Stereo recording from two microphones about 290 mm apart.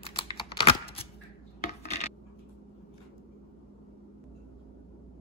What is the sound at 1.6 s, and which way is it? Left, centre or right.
Coin, left.